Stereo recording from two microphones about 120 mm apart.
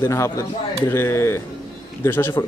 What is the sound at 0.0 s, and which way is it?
A man's voice, 25° left (ahead or behind).